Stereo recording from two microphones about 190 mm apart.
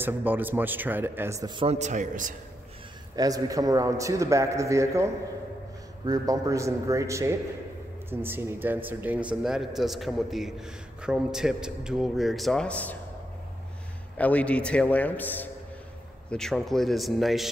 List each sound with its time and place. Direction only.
0.0 s a man's voice: 10° right (ahead or behind); by 1.8 s 25° right (ahead or behind)
1.8 s a man's voice: 40° right (ahead or behind)
3.2 s a man's voice: 20° right (ahead or behind); by 12.9 s 5° left (ahead or behind)
14.1 s a man's voice: 5° left (ahead or behind)